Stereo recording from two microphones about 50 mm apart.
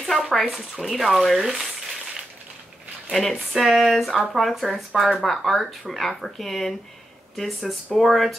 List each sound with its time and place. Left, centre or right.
0.5 s speech: centre
3.1 s speech: centre